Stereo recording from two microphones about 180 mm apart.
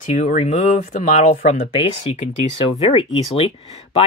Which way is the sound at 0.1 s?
40° left (ahead or behind).